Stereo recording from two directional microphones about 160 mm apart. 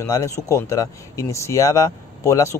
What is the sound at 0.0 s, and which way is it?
Speech, 20° left (ahead or behind).